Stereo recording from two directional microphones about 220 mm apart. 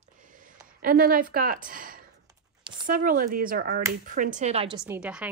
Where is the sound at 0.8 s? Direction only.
40° right (ahead or behind).